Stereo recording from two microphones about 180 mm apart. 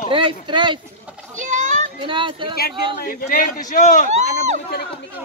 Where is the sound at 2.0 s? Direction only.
30° right (ahead or behind).